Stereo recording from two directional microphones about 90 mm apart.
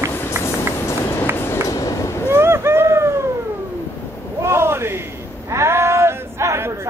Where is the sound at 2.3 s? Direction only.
30° right (ahead or behind).